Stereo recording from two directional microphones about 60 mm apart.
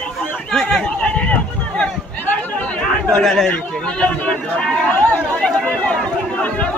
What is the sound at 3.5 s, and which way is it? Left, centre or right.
Speech, centre.